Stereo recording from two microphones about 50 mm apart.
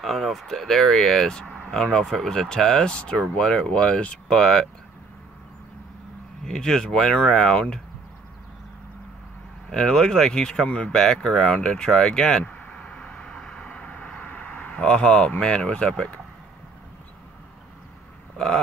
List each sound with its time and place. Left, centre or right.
0.0 s speech: centre
2.0 s speech: centre; by 4.4 s left
4.4 s speech: centre
6.4 s speech: centre
9.7 s speech: centre
12.4 s a sound: left
12.8 s vehicle: left
14.7 s speech: centre